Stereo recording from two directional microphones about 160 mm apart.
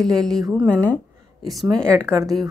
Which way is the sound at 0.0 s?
Centre (ahead or behind).